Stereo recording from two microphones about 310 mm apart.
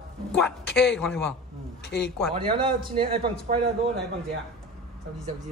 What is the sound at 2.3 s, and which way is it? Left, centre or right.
A man's voice, centre.